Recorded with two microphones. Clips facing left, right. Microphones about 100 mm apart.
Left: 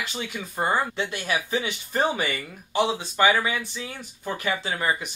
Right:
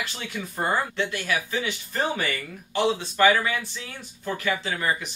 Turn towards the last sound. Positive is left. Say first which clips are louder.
# left 1 dB
turn(degrees=20)  # may be behind; listen again after turning